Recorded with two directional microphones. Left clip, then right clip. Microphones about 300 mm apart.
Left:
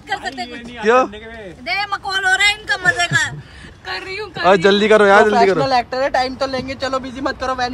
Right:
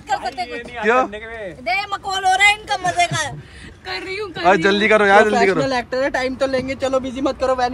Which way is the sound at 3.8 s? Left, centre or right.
Centre.